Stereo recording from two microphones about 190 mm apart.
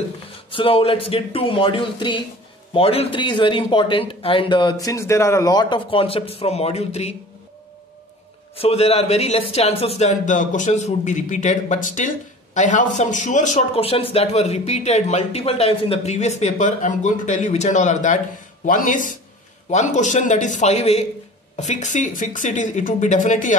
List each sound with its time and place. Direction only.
0.5 s speech: 30° left (ahead or behind)
8.5 s a man's voice: 30° left (ahead or behind)